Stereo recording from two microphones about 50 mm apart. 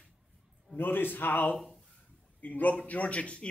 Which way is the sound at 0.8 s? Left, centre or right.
Left.